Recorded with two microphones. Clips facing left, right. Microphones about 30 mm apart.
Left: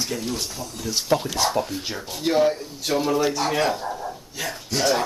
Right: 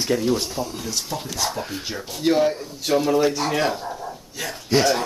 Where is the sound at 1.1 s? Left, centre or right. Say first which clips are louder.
Left 8 dB; left.